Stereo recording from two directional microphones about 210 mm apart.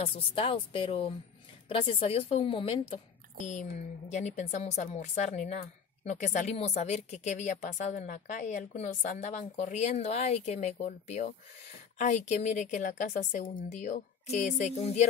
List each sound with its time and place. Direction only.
0.0 s a woman's voice: 25° left (ahead or behind)